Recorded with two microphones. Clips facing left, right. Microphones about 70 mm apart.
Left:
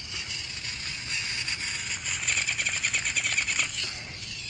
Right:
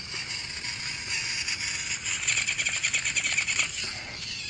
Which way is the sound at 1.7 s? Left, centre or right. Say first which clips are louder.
Even; centre.